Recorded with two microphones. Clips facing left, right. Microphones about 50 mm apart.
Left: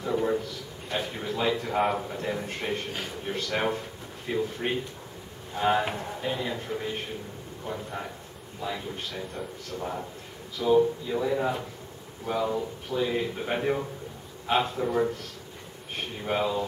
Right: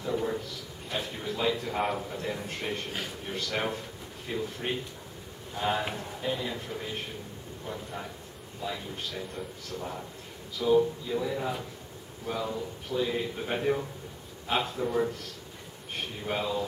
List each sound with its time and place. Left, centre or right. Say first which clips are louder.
0.0 s a sound: left 4 dB; centre
0.9 s a man's voice: left 3 dB; centre
12.9 s a man's voice: left 2 dB; centre